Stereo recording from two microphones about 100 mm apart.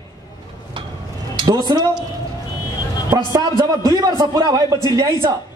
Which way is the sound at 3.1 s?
30° right (ahead or behind).